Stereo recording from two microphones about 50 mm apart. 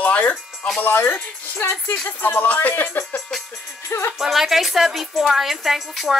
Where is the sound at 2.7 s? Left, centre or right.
Left.